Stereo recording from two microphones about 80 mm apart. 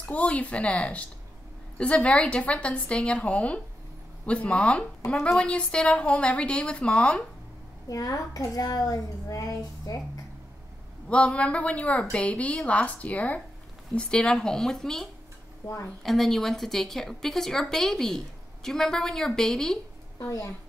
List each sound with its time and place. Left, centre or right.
0.1 s a woman's voice: centre
7.9 s a woman's voice: left
11.1 s a woman's voice: centre
15.6 s a woman's voice: left
16.0 s a woman's voice: centre
20.2 s speech: left